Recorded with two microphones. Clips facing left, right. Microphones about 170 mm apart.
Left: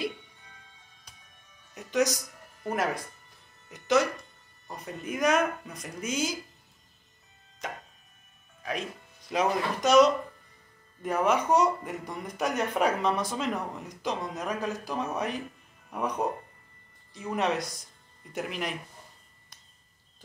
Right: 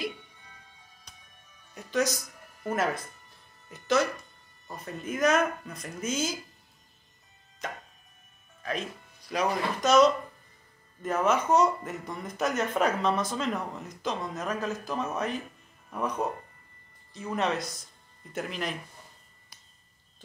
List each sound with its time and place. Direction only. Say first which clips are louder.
1.9 s speech: left 2 dB; 15° left (ahead or behind)
9.3 s speech: left 1 dB; 20° left (ahead or behind)